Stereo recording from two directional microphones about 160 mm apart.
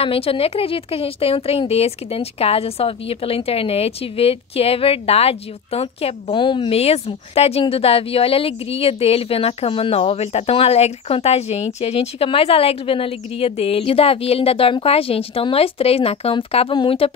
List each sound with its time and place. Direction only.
0.0 s a woman's voice: 35° left (ahead or behind)